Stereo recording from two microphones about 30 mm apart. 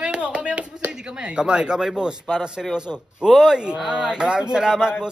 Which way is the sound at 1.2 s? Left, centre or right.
Right.